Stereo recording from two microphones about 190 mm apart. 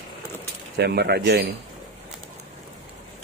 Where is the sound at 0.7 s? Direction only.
60° right (ahead or behind).